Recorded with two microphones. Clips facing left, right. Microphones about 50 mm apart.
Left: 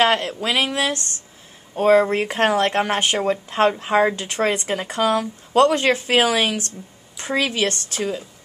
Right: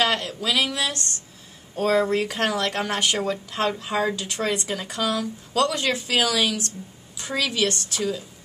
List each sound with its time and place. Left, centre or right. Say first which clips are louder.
0.0 s speech: left 5 dB; left